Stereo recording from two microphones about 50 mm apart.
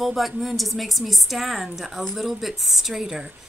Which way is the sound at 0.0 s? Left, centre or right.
Centre.